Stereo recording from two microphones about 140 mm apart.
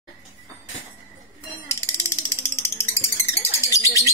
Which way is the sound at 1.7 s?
20° left (ahead or behind).